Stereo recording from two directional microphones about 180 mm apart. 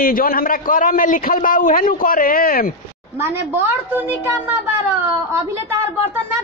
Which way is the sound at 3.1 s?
15° right (ahead or behind).